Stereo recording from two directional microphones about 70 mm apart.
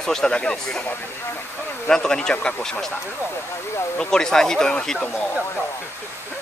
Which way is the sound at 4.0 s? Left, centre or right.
Centre.